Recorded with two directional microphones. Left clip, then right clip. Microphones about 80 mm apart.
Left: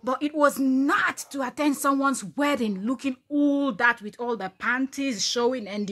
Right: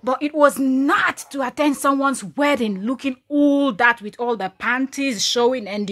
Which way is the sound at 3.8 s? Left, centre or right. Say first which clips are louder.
Right 6 dB; right.